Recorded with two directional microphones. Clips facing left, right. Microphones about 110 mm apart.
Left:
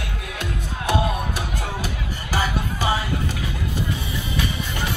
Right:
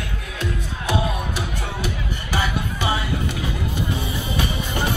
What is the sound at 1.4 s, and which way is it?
Music, 40° left (ahead or behind).